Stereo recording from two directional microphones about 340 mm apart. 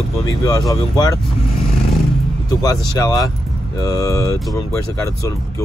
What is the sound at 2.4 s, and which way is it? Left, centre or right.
Speech, centre.